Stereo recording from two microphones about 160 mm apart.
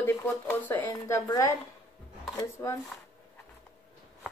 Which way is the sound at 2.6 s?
20° left (ahead or behind).